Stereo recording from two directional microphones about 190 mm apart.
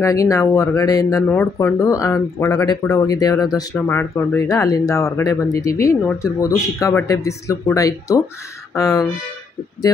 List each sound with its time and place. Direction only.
0.0 s speech: 15° left (ahead or behind)